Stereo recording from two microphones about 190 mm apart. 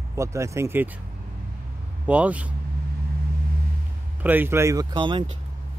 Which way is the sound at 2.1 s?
5° right (ahead or behind).